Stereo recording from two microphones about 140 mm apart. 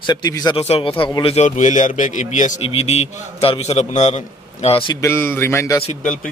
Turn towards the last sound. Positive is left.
turn(degrees=70)  # may be behind; listen again after turning